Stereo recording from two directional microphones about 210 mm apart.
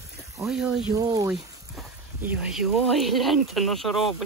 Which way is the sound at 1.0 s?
15° right (ahead or behind).